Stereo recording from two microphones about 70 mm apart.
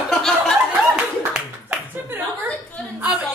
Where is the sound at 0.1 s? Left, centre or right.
Centre.